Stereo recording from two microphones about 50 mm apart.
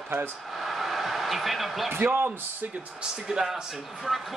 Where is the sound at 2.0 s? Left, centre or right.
Right.